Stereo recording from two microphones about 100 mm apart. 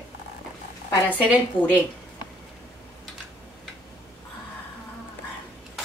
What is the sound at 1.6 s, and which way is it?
Speech, 55° left (ahead or behind).